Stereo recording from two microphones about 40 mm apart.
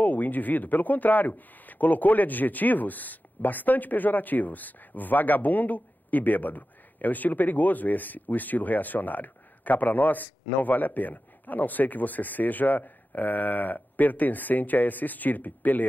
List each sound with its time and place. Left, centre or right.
0.0 s speech: left